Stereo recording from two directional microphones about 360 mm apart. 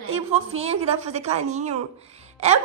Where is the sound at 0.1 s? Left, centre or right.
Centre.